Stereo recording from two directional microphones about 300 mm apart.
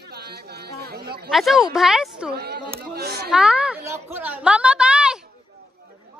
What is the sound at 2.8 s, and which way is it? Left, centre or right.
Chatter, right.